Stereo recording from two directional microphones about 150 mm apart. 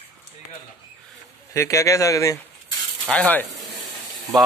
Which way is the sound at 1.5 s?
20° left (ahead or behind).